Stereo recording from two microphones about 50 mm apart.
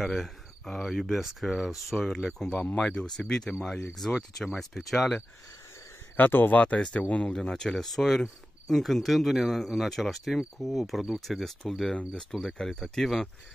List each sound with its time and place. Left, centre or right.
0.0 s speech: centre
1.0 s speech: centre
2.3 s cricket: centre
6.1 s speech: left
6.6 s speech: left
7.3 s speech: centre
11.1 s cricket: centre
12.4 s cricket: centre